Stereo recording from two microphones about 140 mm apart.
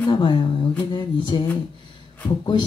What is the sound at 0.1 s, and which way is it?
Speech, 35° left (ahead or behind).